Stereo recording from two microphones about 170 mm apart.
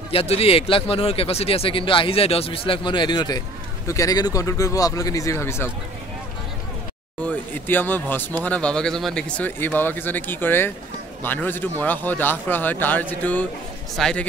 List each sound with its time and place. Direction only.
0.1 s speech: 35° left (ahead or behind); by 5.7 s 15° left (ahead or behind)
7.2 s speech: 10° left (ahead or behind)